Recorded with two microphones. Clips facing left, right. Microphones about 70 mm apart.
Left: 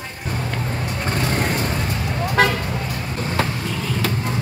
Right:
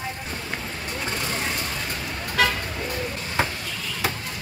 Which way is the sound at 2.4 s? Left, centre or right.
Left.